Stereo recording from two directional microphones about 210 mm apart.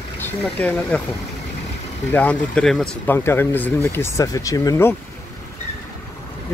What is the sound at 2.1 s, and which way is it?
Speech, 5° left (ahead or behind).